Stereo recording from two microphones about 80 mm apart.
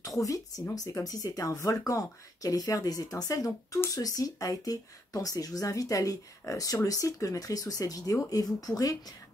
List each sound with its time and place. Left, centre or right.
0.0 s speech: left